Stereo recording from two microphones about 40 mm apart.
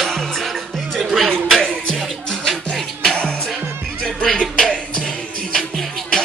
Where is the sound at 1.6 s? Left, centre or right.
Centre.